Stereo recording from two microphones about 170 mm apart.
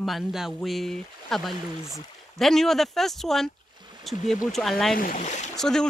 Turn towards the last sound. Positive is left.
turn(degrees=5)  # may be behind; listen again after turning